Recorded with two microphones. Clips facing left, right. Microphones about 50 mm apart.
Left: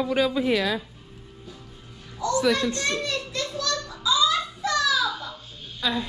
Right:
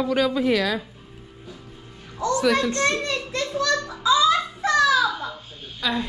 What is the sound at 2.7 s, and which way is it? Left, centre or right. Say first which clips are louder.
A woman's voice: right 4 dB; right.